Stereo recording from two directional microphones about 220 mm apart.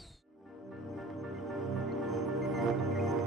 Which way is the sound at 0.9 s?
Centre (ahead or behind).